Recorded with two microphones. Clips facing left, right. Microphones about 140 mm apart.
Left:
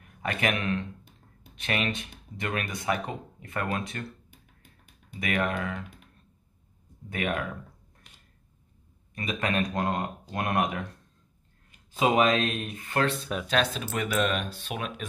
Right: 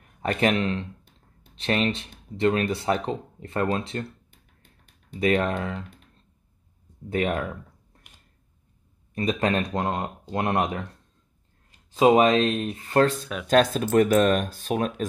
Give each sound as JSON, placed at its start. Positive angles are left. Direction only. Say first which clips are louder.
{"t": 0.2, "sound": "speech", "louder": "right 6 dB", "side_deg": -30}
{"t": 5.2, "sound": "speech", "louder": "right 6 dB", "side_deg": -30}
{"t": 7.1, "sound": "speech", "louder": "right 5 dB", "side_deg": -30}
{"t": 9.1, "sound": "speech", "louder": "right 5 dB", "side_deg": -35}
{"t": 12.0, "sound": "speech", "louder": "right 6 dB", "side_deg": -30}